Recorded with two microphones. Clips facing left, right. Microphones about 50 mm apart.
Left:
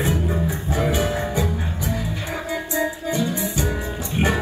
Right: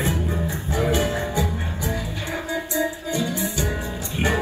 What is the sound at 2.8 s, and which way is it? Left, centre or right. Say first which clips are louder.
Music: left 2 dB; left.